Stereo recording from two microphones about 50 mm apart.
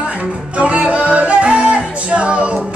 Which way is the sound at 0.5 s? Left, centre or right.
Right.